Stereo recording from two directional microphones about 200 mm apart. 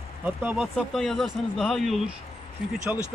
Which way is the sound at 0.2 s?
5° right (ahead or behind).